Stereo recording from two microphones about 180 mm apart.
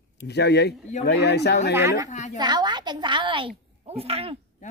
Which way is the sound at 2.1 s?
40° left (ahead or behind).